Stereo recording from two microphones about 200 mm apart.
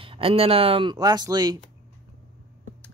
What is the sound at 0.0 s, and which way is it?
Speech, 25° right (ahead or behind).